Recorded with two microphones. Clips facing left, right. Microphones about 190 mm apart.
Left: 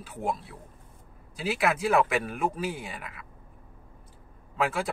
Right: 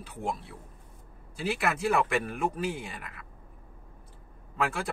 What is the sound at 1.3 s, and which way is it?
Speech, centre (ahead or behind).